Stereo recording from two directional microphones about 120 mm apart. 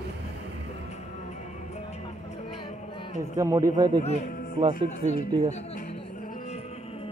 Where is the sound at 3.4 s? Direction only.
25° right (ahead or behind).